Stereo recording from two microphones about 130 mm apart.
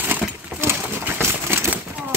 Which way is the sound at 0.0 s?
10° right (ahead or behind).